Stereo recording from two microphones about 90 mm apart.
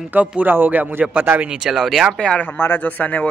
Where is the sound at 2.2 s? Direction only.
10° left (ahead or behind).